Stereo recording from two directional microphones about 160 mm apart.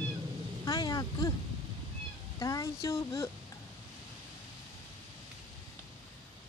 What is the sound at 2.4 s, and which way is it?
Speech, 20° left (ahead or behind).